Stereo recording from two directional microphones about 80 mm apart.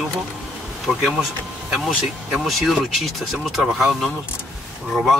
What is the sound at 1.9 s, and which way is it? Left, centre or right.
Speech, centre.